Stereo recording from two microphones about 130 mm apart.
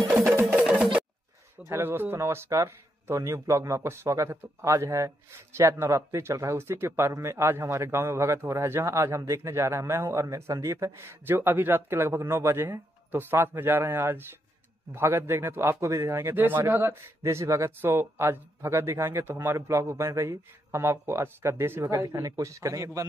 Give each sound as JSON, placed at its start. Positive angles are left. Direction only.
{"t": 0.6, "sound": "music", "side_deg": -10}
{"t": 1.7, "sound": "speech", "side_deg": -15}